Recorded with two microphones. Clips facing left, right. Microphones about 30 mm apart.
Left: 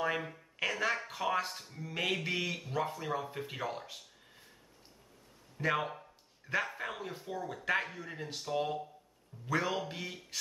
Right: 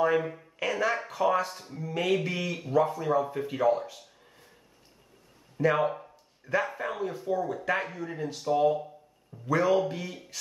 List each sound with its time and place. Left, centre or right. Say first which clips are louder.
0.0 s speech: right 9 dB; centre
5.6 s speech: right 8 dB; centre
5.9 s a sound: right 11 dB; centre
6.8 s speech: right 8 dB; centre
10.3 s music: left 2 dB; centre